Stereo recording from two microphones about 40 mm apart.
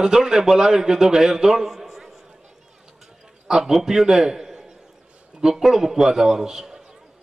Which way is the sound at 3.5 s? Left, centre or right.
Centre.